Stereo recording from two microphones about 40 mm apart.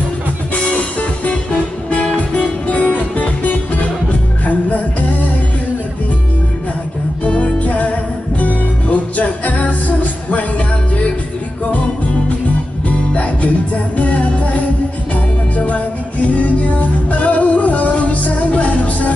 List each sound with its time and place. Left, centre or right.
2.1 s music: left
4.5 s music: left
7.2 s music: left
12.8 s music: left